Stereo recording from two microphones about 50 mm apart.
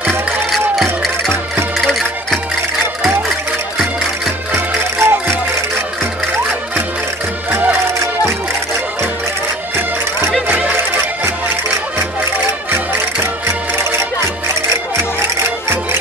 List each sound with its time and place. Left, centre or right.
4.9 s music: right